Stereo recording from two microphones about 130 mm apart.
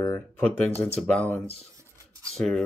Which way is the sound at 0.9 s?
10° left (ahead or behind).